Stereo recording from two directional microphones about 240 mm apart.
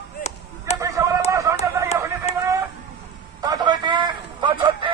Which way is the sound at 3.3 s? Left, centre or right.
Centre.